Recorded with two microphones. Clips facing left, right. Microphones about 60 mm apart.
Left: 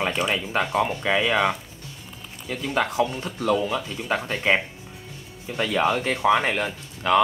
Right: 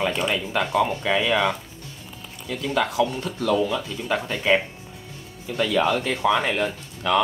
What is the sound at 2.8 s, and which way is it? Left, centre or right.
Speech, left.